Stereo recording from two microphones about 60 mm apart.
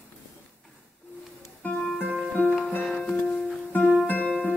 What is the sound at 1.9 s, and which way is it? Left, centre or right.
Music, centre.